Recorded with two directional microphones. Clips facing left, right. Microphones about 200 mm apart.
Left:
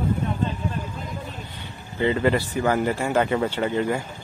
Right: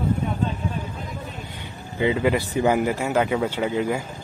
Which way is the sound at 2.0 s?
5° right (ahead or behind).